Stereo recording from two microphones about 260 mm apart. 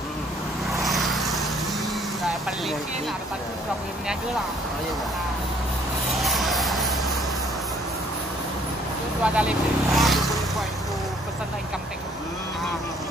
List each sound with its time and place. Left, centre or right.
0.8 s vehicle: centre
6.2 s a sound: centre
9.2 s vehicle: centre